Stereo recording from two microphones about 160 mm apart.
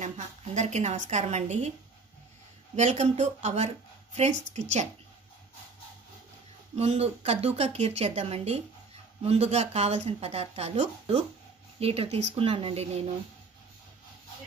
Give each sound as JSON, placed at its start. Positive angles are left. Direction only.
{"t": 0.0, "sound": "a woman's voice", "side_deg": -45}
{"t": 2.7, "sound": "speech", "side_deg": -45}
{"t": 6.7, "sound": "speech", "side_deg": -40}